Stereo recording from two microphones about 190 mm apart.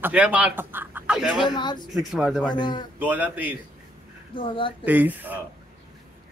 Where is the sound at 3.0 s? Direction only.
10° right (ahead or behind).